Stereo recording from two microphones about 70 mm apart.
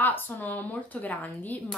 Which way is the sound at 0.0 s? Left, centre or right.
Left.